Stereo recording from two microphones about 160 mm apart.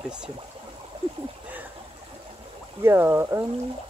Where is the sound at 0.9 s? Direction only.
35° right (ahead or behind).